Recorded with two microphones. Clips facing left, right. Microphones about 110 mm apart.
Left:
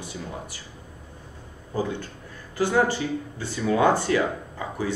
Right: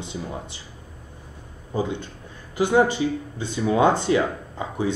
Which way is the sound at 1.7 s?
20° right (ahead or behind).